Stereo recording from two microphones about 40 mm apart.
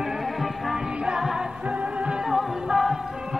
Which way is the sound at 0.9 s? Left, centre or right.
Centre.